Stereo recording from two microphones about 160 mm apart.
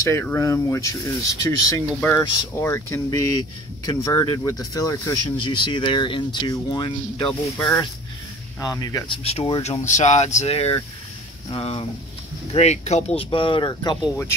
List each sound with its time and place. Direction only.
0.0 s speech: 15° left (ahead or behind); by 7.3 s 30° left (ahead or behind)
7.5 s speech: 10° left (ahead or behind)
8.5 s speech: 25° left (ahead or behind)